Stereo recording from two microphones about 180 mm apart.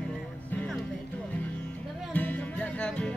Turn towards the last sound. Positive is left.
turn(degrees=5)  # may be behind; listen again after turning